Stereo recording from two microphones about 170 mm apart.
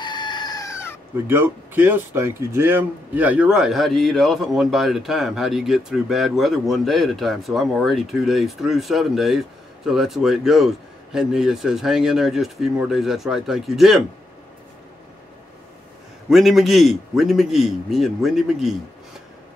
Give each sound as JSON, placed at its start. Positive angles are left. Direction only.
{"t": 0.0, "sound": "chicken", "side_deg": 25}
{"t": 1.1, "sound": "speech", "side_deg": -15}
{"t": 16.3, "sound": "speech", "side_deg": 0}